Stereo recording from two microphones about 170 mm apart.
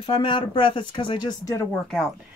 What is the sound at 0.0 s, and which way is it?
Speech, 30° left (ahead or behind).